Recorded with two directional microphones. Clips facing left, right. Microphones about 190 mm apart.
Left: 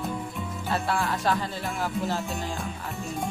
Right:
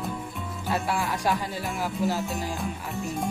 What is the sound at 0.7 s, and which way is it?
Speech, 15° right (ahead or behind).